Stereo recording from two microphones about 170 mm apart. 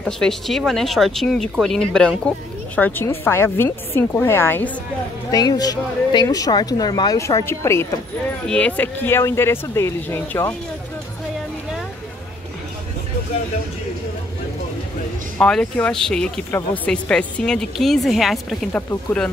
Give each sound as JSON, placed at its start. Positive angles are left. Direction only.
{"t": 0.0, "sound": "speech", "side_deg": 0}
{"t": 5.3, "sound": "speech", "side_deg": 25}
{"t": 15.3, "sound": "speech", "side_deg": 5}
{"t": 18.7, "sound": "speech", "side_deg": 15}